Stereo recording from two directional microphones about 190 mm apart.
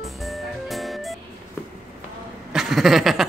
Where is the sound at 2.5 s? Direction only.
Centre (ahead or behind).